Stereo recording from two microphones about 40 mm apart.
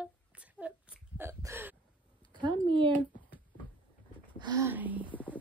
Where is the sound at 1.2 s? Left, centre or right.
Right.